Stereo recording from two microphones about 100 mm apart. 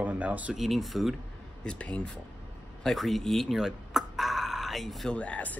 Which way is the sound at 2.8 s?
Centre (ahead or behind).